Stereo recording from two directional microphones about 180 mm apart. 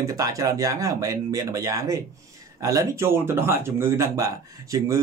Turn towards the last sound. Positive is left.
turn(degrees=-15)  # may be behind; listen again after turning